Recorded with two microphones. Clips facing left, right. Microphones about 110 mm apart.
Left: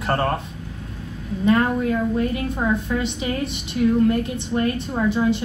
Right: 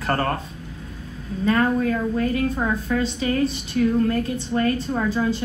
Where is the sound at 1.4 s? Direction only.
20° left (ahead or behind).